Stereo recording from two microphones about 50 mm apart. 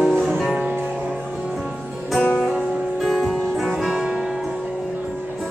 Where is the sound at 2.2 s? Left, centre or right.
Centre.